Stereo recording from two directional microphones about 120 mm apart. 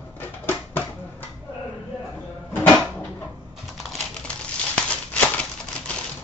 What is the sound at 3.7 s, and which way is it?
Typing, centre (ahead or behind).